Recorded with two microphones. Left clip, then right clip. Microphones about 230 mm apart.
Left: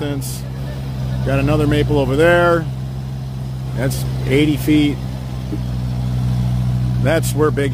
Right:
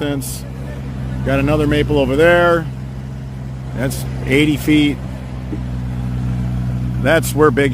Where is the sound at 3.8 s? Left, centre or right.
Centre.